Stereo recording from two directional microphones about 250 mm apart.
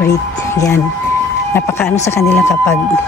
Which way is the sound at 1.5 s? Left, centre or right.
Centre.